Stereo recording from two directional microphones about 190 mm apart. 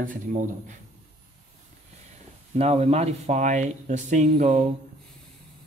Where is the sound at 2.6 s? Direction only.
35° right (ahead or behind).